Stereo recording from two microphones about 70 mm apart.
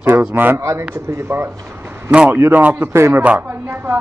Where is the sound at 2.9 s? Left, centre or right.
Right.